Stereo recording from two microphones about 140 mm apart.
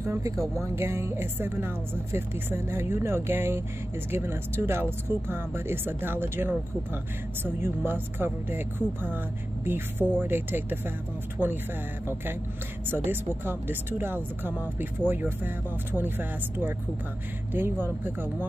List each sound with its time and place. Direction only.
0.0 s speech: 20° right (ahead or behind)
11.4 s speech: 10° left (ahead or behind)
12.9 s speech: 15° right (ahead or behind)